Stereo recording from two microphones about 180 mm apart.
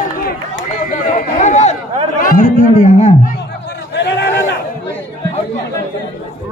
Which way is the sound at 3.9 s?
75° left (ahead or behind).